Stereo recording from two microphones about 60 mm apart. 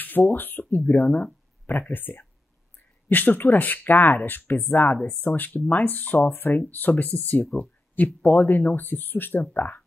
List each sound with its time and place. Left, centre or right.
0.0 s speech: left